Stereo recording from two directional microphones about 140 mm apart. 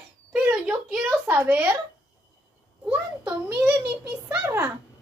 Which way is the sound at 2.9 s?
10° right (ahead or behind).